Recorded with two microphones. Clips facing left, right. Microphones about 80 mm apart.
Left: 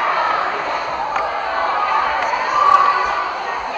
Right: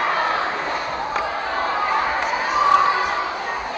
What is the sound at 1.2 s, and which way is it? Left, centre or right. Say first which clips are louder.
Crowd: left 3 dB; centre.